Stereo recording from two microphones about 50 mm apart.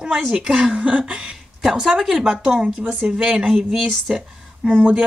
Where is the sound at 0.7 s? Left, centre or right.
Right.